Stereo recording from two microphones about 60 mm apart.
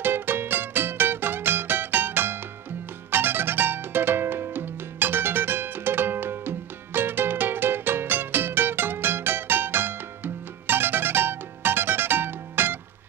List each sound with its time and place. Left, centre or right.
0.0 s music: right